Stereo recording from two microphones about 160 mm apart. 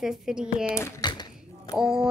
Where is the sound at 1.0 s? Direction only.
30° left (ahead or behind).